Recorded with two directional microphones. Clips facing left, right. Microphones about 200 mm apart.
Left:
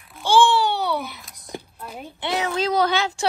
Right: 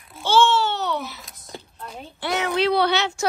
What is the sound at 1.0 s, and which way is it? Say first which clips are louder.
Speech: even; centre (ahead or behind).